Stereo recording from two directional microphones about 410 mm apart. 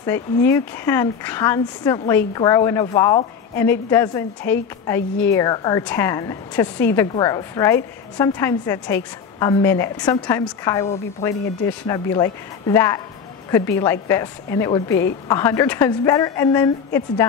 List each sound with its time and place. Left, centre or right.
0.0 s a woman's voice: centre